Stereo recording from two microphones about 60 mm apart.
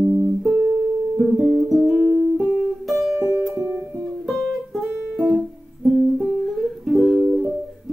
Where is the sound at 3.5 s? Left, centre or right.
Right.